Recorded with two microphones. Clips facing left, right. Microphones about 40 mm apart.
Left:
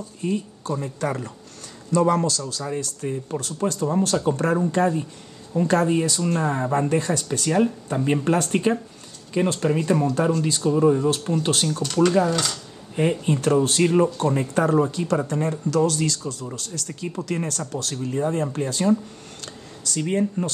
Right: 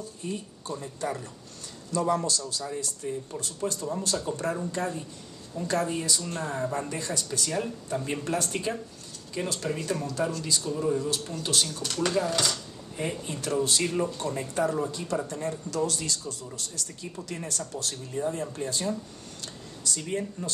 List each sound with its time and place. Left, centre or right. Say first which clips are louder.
0.2 s speech: left 11 dB; left
1.9 s speech: left 7 dB; left
2.7 s speech: left 5 dB; left
11.8 s speech: left 11 dB; centre
13.2 s speech: left 7 dB; left
14.1 s speech: left 8 dB; left
18.1 s speech: left 7 dB; left
19.4 s a sound: left 1 dB; left
20.0 s speech: left 11 dB; left